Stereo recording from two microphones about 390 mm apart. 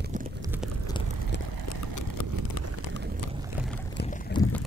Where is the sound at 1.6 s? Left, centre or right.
Left.